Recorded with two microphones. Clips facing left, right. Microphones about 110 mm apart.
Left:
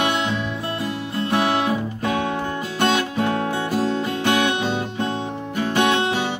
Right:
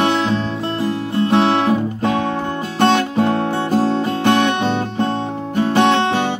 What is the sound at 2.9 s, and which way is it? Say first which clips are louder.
Music: right 5 dB; 55° right (ahead or behind).